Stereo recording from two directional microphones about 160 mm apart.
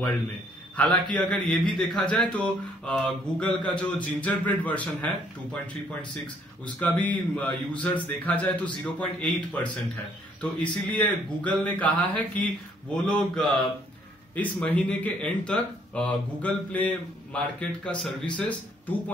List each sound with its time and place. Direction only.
0.7 s speech: 5° left (ahead or behind)